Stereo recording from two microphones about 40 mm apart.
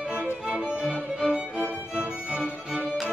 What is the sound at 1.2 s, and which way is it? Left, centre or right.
Music, right.